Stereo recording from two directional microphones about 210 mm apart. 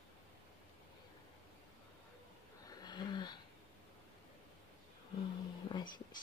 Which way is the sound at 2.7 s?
20° left (ahead or behind).